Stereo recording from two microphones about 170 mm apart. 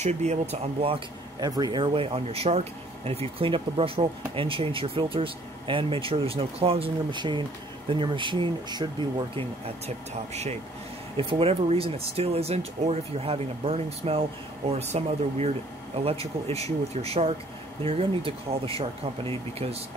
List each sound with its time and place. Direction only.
0.0 s speech: 40° right (ahead or behind)